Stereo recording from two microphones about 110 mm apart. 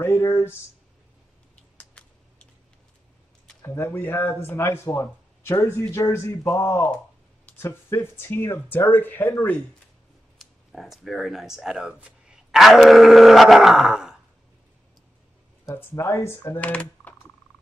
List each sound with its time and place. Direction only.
0.0 s speech: 25° left (ahead or behind)
1.8 s a sound: 10° left (ahead or behind)
3.6 s speech: 20° left (ahead or behind)
10.4 s speech: centre (ahead or behind)
15.6 s speech: 20° left (ahead or behind)